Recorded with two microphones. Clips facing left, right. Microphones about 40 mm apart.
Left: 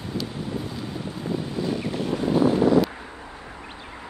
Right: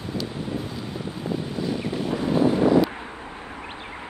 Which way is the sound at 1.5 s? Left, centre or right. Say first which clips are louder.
Even; centre.